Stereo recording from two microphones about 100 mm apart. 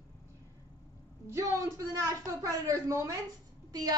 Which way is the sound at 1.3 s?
30° right (ahead or behind).